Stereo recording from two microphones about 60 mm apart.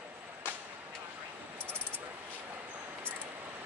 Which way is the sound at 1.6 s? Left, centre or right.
Right.